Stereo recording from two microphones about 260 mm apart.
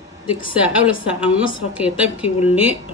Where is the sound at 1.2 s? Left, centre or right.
Centre.